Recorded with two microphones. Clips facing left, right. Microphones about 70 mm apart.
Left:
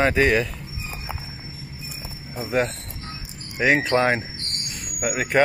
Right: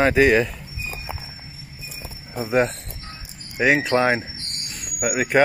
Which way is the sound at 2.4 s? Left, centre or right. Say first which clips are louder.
Right 3 dB; right.